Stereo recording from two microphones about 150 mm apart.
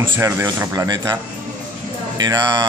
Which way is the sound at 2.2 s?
30° right (ahead or behind).